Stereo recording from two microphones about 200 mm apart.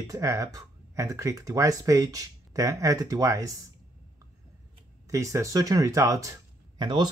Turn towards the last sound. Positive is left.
turn(degrees=-20)  # may be behind; listen again after turning